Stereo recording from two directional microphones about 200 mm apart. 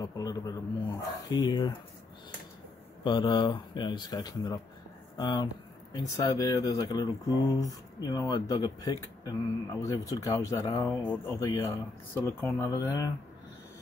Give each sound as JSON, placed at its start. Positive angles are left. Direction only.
{"t": 0.0, "sound": "speech", "side_deg": 20}
{"t": 3.0, "sound": "speech", "side_deg": 20}